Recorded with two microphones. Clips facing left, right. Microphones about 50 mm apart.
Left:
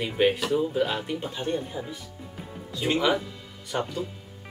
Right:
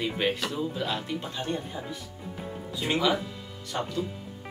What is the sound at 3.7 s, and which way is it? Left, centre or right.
Speech, left.